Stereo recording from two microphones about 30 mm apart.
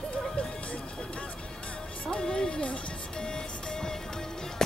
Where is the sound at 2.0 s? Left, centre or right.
Left.